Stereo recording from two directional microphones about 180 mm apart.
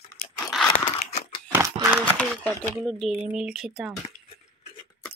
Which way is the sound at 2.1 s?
5° left (ahead or behind).